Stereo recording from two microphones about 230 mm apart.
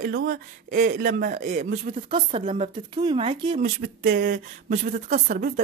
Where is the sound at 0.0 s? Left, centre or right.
Right.